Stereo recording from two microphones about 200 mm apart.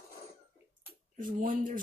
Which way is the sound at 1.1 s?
45° right (ahead or behind).